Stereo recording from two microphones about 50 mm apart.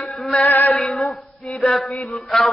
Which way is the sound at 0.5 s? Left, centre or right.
Left.